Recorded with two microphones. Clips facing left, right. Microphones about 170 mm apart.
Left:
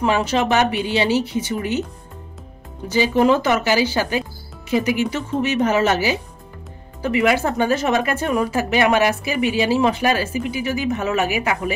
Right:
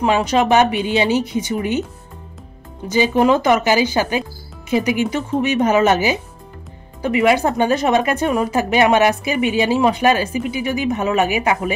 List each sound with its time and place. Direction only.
0.0 s speech: 15° right (ahead or behind)
2.9 s speech: 15° right (ahead or behind)